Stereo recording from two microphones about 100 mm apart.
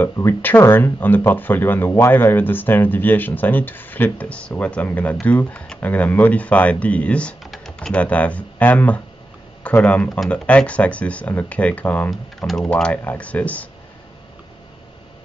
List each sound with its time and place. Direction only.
0.0 s speech: 20° left (ahead or behind)
12.1 s speech: centre (ahead or behind)